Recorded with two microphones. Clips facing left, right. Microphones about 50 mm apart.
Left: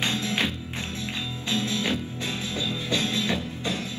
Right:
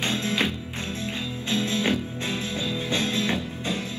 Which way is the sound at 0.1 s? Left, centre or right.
Right.